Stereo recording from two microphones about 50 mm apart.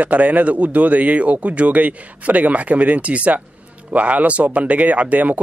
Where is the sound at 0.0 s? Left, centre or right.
Right.